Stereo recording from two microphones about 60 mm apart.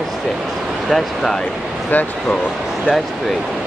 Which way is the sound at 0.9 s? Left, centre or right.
Centre.